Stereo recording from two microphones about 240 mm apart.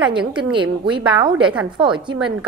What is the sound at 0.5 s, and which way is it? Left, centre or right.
Speech, centre.